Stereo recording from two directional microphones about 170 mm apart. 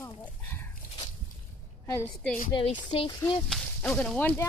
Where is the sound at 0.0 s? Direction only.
10° left (ahead or behind).